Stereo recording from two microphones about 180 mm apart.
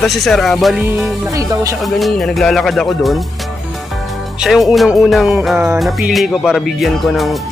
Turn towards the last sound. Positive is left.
turn(degrees=0)  # may be behind; listen again after turning